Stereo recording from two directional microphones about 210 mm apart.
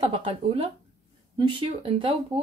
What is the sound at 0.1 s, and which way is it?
Speech, 25° right (ahead or behind).